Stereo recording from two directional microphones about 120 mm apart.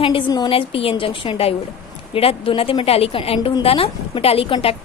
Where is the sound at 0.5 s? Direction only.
50° left (ahead or behind).